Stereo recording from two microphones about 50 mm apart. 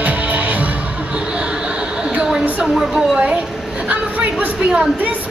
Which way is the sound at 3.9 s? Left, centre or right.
Right.